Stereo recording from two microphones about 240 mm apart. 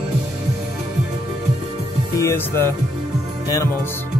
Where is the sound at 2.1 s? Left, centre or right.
Centre.